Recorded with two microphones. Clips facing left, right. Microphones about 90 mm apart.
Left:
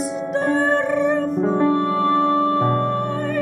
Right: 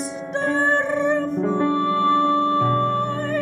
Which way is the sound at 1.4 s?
30° left (ahead or behind).